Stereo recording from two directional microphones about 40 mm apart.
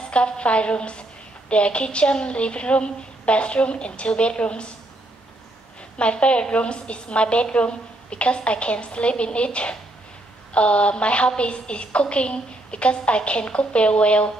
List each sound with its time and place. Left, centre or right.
0.1 s a woman's voice: left
5.9 s a woman's voice: left